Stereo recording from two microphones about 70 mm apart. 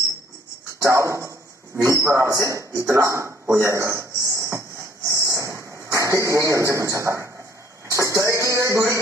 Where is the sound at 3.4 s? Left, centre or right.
Right.